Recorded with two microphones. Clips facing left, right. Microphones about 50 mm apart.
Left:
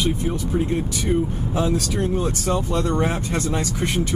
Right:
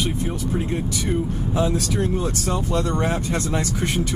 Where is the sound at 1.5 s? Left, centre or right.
Left.